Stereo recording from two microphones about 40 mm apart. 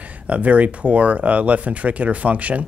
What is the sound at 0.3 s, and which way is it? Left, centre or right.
Speech, right.